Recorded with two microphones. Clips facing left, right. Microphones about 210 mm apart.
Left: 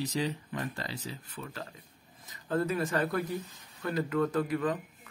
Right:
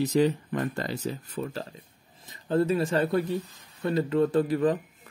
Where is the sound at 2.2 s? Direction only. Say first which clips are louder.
Right 6 dB; 30° right (ahead or behind).